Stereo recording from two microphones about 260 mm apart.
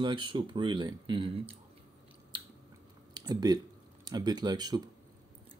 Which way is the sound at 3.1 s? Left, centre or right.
Centre.